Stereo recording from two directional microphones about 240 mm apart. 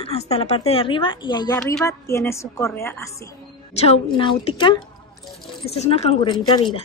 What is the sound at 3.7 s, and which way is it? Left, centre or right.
A woman's voice, left.